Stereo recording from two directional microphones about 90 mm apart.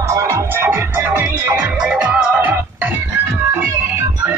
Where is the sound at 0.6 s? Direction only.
20° right (ahead or behind).